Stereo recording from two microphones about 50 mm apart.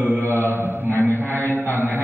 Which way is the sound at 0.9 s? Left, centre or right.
Left.